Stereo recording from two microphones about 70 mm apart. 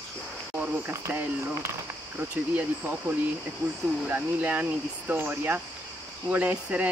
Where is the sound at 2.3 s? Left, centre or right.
Right.